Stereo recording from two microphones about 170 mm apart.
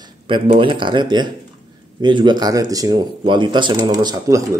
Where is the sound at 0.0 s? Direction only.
30° right (ahead or behind).